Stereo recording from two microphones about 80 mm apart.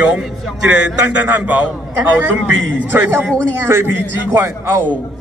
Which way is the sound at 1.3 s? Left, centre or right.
Right.